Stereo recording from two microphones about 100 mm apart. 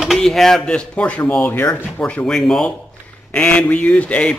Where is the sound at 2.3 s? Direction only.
5° left (ahead or behind).